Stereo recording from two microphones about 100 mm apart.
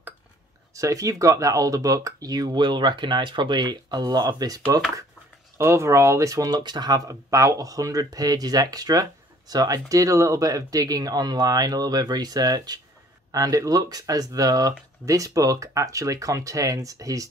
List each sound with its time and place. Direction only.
0.7 s speech: 35° right (ahead or behind)
5.6 s speech: 30° right (ahead or behind)